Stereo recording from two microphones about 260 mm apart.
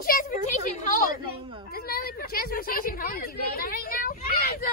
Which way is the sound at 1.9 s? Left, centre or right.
Left.